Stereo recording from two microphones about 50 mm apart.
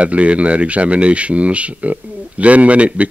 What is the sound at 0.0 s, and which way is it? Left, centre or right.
Speech, right.